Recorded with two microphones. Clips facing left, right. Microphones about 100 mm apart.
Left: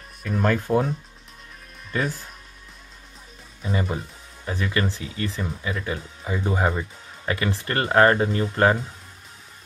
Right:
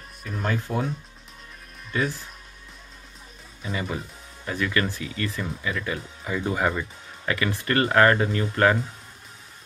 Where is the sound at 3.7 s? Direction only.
35° left (ahead or behind).